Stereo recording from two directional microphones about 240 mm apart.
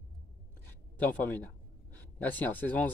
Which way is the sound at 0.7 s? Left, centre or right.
Centre.